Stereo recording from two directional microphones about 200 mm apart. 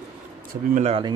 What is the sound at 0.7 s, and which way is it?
Speech, 30° right (ahead or behind).